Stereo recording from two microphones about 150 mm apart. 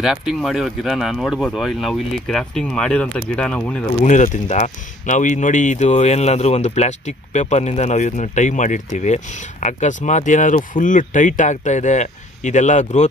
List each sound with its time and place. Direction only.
0.0 s speech: 5° right (ahead or behind)
4.0 s speech: 55° left (ahead or behind)